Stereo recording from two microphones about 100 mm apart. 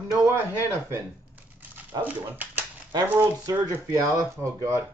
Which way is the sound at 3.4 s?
35° right (ahead or behind).